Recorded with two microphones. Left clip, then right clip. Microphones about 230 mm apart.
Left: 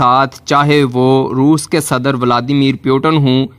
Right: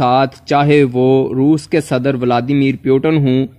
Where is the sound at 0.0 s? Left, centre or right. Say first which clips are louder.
Left 2 dB; centre.